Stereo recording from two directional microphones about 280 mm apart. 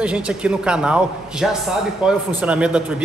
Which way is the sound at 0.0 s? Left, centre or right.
Centre.